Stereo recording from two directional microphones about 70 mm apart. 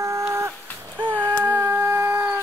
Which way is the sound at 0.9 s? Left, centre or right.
Right.